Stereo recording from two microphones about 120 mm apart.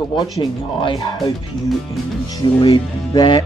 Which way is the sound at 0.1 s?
40° left (ahead or behind).